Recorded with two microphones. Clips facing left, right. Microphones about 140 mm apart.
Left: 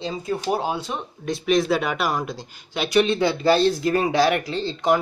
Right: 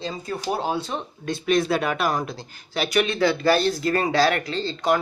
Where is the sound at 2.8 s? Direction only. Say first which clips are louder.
Left 2 dB; 25° left (ahead or behind).